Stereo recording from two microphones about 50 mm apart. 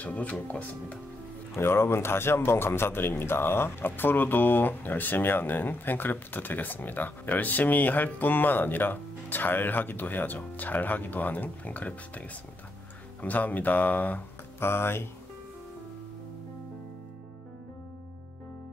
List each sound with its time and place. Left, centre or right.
0.0 s speech: left
1.5 s speech: left
14.6 s speech: left